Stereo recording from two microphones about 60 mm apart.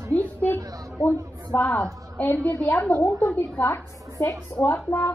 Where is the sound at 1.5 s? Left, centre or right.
Left.